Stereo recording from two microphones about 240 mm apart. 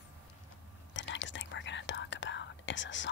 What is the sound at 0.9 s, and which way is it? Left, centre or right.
Whispering, left.